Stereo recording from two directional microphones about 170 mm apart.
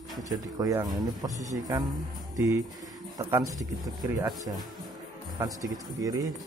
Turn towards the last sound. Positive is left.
turn(degrees=-20)  # may be behind; listen again after turning